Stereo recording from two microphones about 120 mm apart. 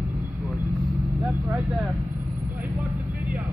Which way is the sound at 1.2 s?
25° right (ahead or behind).